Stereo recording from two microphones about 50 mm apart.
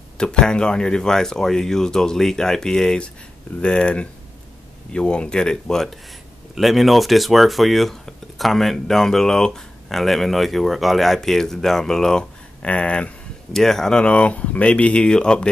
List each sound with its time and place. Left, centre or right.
0.2 s speech: centre
6.5 s speech: centre
12.6 s speech: left
13.5 s speech: centre